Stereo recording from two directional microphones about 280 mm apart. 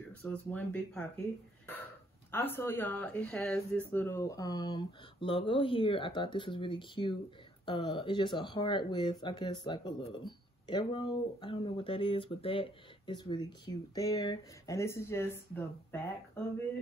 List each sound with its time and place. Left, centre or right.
0.1 s speech: centre
2.3 s speech: centre